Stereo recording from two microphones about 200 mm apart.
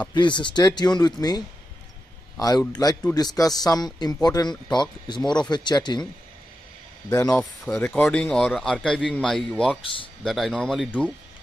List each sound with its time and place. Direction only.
0.1 s a man's voice: 25° left (ahead or behind)
7.2 s a man's voice: centre (ahead or behind)
9.8 s speech: 25° left (ahead or behind)
10.2 s a man's voice: centre (ahead or behind)